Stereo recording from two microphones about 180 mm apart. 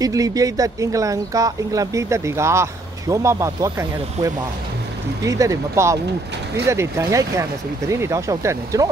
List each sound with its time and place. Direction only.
0.0 s speech: 20° right (ahead or behind)